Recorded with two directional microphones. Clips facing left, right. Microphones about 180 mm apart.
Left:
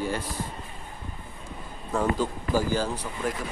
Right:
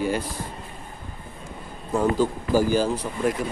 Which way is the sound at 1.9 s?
10° right (ahead or behind).